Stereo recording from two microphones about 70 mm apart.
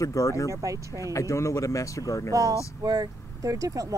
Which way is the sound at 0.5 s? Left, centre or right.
Right.